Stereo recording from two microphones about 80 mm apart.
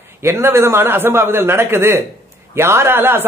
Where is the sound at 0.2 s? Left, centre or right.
Right.